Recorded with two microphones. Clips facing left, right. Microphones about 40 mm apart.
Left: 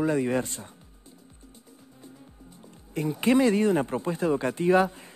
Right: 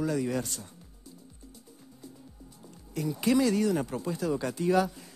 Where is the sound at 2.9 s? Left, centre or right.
Left.